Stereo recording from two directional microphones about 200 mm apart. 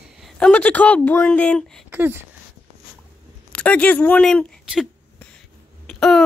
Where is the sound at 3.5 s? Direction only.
5° left (ahead or behind).